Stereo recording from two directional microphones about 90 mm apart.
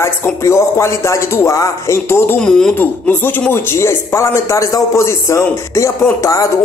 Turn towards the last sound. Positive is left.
turn(degrees=40)  # may be behind; listen again after turning